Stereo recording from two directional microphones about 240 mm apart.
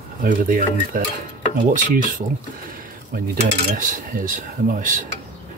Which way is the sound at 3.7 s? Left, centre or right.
Right.